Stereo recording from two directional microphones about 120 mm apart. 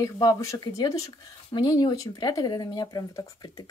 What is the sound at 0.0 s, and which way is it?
Speech, 30° left (ahead or behind).